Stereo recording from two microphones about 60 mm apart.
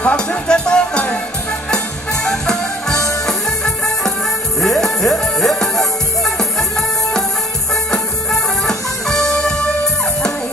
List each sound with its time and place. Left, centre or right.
0.0 s speech: centre
2.2 s music: centre
7.7 s music: centre